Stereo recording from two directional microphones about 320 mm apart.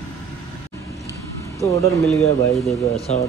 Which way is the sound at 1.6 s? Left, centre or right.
Centre.